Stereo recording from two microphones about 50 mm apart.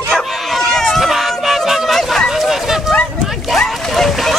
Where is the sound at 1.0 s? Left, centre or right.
Centre.